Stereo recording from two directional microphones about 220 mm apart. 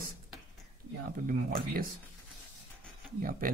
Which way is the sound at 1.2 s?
40° right (ahead or behind).